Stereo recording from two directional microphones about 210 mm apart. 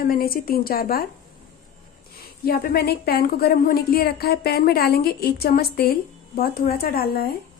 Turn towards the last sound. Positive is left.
turn(degrees=45)  # may be behind; listen again after turning